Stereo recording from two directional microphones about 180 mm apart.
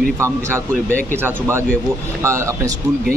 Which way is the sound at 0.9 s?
15° right (ahead or behind).